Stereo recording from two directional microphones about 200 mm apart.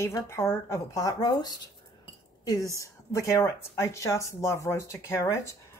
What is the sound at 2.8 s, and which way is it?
Speech, 15° left (ahead or behind).